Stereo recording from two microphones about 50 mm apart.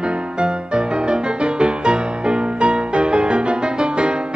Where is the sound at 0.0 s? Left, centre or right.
Centre.